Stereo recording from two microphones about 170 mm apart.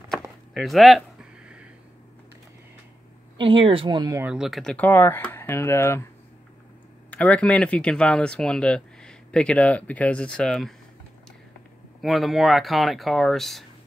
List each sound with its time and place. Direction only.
0.6 s speech: centre (ahead or behind)
3.3 s speech: 30° right (ahead or behind)
4.2 s speech: 5° right (ahead or behind); by 6.0 s 15° left (ahead or behind)
7.1 s speech: 10° left (ahead or behind)
12.0 s speech: centre (ahead or behind)